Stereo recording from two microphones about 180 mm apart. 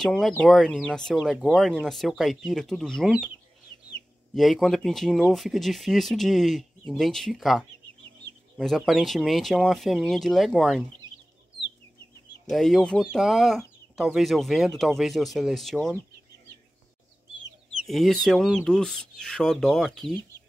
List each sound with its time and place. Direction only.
0.0 s speech: 5° left (ahead or behind)
4.4 s speech: centre (ahead or behind)
12.4 s speech: centre (ahead or behind)
17.7 s speech: centre (ahead or behind)